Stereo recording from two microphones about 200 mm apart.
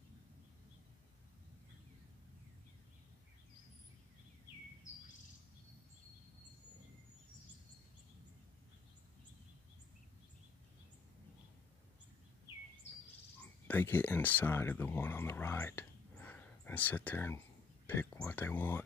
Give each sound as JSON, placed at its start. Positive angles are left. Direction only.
{"t": 4.9, "sound": "bird vocalization", "side_deg": 40}
{"t": 13.7, "sound": "speech", "side_deg": 10}